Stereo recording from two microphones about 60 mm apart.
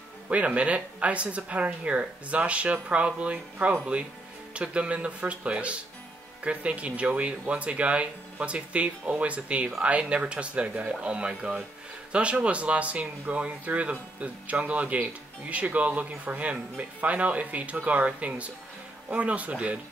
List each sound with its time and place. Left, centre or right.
0.3 s speech: right